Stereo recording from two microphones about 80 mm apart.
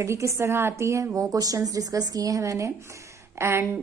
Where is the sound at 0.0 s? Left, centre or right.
Right.